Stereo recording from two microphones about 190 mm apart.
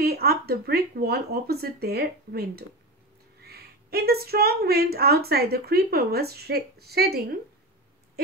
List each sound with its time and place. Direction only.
0.0 s a woman's voice: 55° right (ahead or behind)